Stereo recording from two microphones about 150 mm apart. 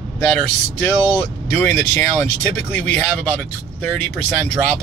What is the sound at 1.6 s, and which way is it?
Speech, 10° left (ahead or behind).